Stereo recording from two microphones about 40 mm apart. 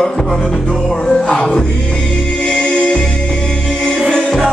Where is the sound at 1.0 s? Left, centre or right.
Centre.